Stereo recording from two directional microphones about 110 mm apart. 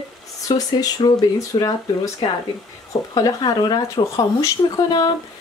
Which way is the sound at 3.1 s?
35° left (ahead or behind).